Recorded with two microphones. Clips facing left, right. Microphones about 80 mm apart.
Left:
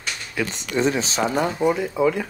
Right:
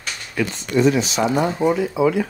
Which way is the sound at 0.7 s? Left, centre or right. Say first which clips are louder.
Right 4 dB; left.